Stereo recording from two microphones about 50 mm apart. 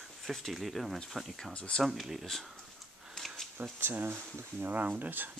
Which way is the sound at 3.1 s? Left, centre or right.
Centre.